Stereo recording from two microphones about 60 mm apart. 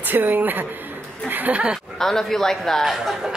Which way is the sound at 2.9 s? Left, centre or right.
Centre.